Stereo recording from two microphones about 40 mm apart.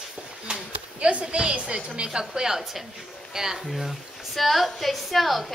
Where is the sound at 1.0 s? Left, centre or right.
Right.